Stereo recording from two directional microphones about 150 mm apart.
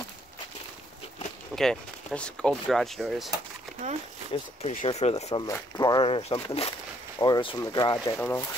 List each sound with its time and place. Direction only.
1.5 s speech: 5° left (ahead or behind)
4.3 s speech: 40° left (ahead or behind)
5.5 s speech: 25° left (ahead or behind)
6.0 s speech: 40° left (ahead or behind)
7.2 s speech: 30° left (ahead or behind)
8.2 s speech: 15° left (ahead or behind)